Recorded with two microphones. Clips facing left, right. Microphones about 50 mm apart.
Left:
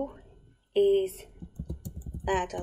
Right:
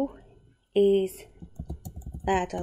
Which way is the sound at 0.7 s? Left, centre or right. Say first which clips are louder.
Right 2 dB; right.